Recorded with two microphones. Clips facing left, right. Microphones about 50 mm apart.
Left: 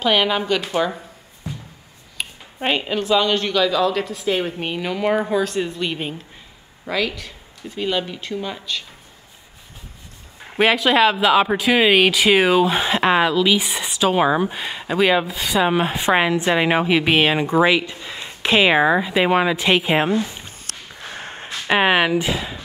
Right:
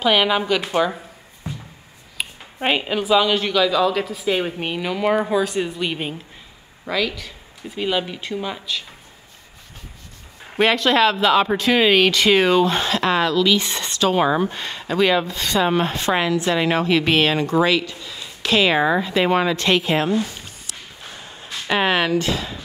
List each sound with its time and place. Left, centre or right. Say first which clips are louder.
0.0 s speech: right 1 dB; centre
2.1 s speech: right 1 dB; centre
10.5 s speech: left 1 dB; centre; by 20.5 s left
21.0 s a sound: left 5 dB; left
21.5 s speech: left 3 dB; centre